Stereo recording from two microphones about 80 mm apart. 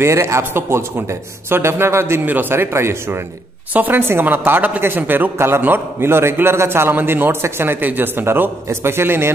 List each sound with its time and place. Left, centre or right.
0.0 s a man's voice: right